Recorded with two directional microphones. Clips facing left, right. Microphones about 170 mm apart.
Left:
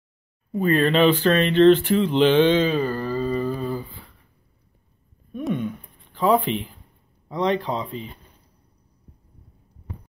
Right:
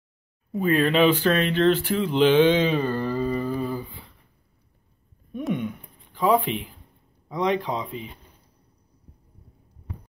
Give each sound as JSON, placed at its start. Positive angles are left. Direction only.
{"t": 0.5, "sound": "speech", "side_deg": 0}
{"t": 6.1, "sound": "speech", "side_deg": -10}